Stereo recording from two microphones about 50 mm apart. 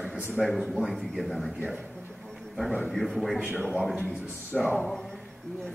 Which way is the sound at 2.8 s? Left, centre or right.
Centre.